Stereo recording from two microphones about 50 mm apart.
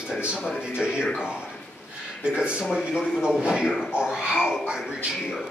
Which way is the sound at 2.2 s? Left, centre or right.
Centre.